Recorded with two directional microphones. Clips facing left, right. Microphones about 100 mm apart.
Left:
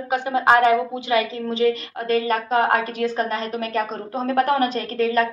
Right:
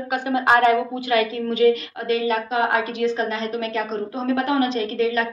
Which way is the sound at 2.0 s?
45° left (ahead or behind).